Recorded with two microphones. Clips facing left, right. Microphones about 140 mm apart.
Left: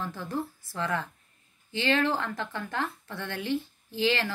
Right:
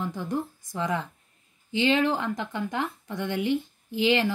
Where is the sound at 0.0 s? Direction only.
15° right (ahead or behind).